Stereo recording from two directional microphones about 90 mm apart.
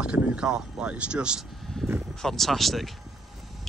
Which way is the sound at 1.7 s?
10° left (ahead or behind).